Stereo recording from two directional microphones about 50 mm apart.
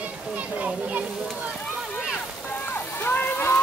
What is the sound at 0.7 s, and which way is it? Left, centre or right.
Speech, right.